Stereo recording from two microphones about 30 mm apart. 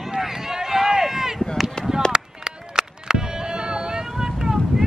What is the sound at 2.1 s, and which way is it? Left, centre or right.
Run, right.